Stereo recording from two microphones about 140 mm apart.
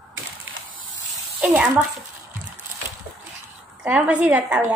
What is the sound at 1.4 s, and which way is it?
Speech, 10° right (ahead or behind).